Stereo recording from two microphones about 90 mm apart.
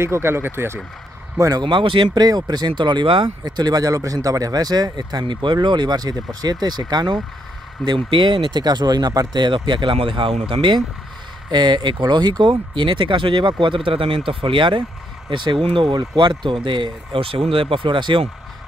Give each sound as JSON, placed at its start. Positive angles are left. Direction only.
{"t": 0.0, "sound": "speech", "side_deg": -30}
{"t": 1.6, "sound": "speech", "side_deg": -65}
{"t": 2.1, "sound": "speech", "side_deg": -50}
{"t": 5.2, "sound": "speech", "side_deg": -60}
{"t": 8.5, "sound": "speech", "side_deg": -50}
{"t": 11.5, "sound": "speech", "side_deg": -55}
{"t": 15.9, "sound": "speech", "side_deg": -55}